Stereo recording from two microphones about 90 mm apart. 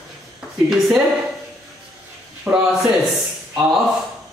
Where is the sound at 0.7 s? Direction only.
Centre (ahead or behind).